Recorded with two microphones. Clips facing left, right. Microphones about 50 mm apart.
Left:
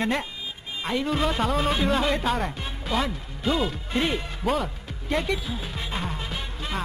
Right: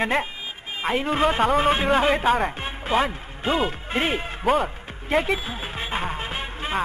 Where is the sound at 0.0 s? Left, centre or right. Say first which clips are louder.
Right 3 dB; right.